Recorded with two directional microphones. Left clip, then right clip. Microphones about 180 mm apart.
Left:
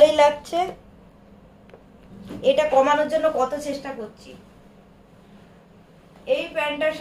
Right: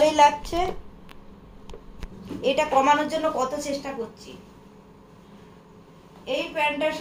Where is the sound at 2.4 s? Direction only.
Centre (ahead or behind).